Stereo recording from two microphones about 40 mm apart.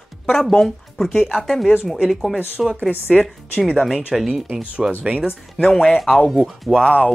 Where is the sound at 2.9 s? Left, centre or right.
Left.